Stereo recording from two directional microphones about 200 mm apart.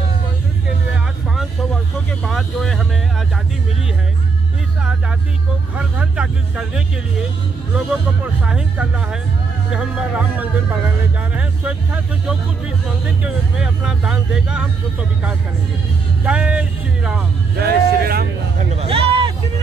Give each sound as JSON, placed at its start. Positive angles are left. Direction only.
{"t": 1.3, "sound": "vehicle", "side_deg": 0}
{"t": 2.2, "sound": "speech", "side_deg": 0}
{"t": 5.8, "sound": "speech", "side_deg": -5}
{"t": 8.5, "sound": "speech", "side_deg": -5}
{"t": 17.6, "sound": "speech", "side_deg": -50}
{"t": 18.7, "sound": "speech", "side_deg": -30}